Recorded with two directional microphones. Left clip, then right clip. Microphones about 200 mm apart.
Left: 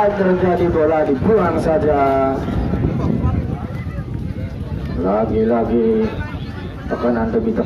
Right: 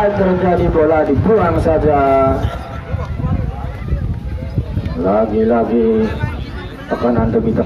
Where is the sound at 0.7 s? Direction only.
35° left (ahead or behind).